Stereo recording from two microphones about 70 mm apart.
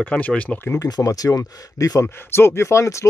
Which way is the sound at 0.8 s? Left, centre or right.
Left.